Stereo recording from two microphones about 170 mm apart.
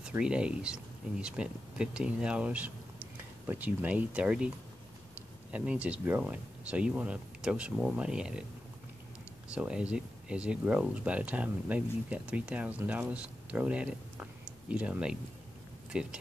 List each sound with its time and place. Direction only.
0.0 s speech: 5° right (ahead or behind)
9.5 s speech: 5° right (ahead or behind)